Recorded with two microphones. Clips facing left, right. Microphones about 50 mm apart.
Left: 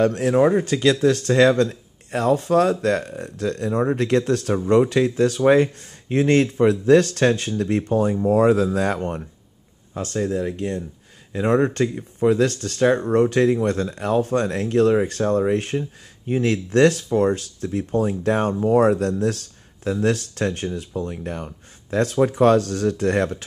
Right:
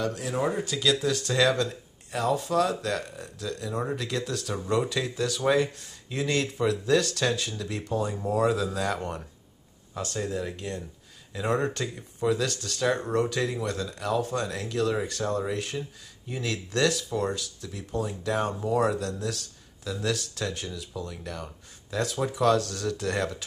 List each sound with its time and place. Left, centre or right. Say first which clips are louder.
0.0 s speech: left 11 dB; left
0.5 s speech: left 8 dB; left